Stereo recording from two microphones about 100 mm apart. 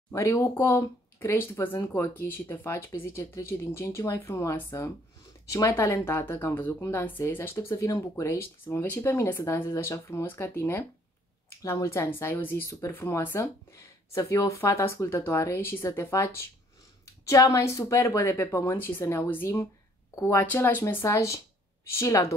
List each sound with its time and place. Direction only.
0.1 s speech: 30° left (ahead or behind)